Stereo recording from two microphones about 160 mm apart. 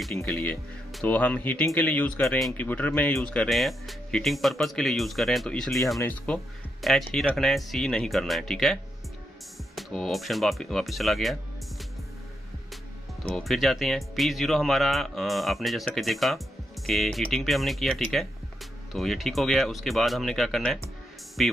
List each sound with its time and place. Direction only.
0.1 s speech: 15° left (ahead or behind)
9.8 s speech: centre (ahead or behind)
13.3 s speech: centre (ahead or behind)